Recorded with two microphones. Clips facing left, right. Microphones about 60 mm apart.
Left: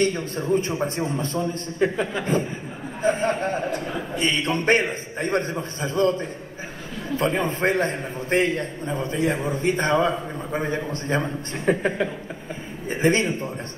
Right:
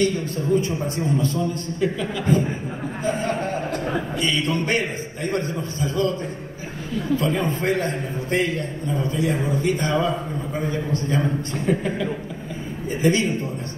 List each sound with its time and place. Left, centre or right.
0.0 s a man's voice: left